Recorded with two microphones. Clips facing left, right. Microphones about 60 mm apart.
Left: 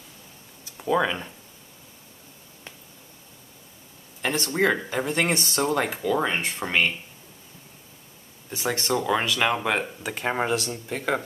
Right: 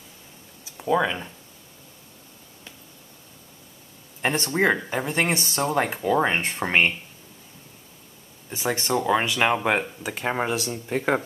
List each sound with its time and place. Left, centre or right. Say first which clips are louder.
0.7 s speech: right 1 dB; centre
4.2 s speech: right 1 dB; right
6.2 s speech: right 2 dB; right
8.5 s speech: right 1 dB; centre
10.5 s speech: right 1 dB; centre